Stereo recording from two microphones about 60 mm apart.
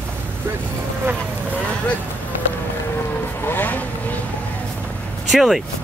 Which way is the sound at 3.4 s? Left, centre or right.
Left.